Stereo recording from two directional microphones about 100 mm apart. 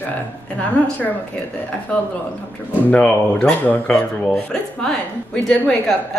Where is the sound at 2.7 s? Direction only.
15° left (ahead or behind).